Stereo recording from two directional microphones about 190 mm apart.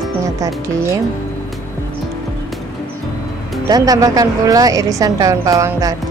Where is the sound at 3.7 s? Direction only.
20° right (ahead or behind).